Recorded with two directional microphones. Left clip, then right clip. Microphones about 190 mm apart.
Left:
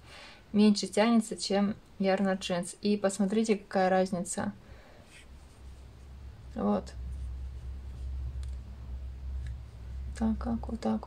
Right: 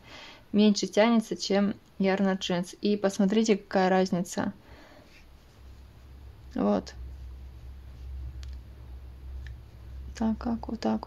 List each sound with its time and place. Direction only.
0.1 s a sound: 40° right (ahead or behind)
0.9 s speech: 40° right (ahead or behind)
6.5 s speech: 40° right (ahead or behind)
10.1 s speech: 40° right (ahead or behind)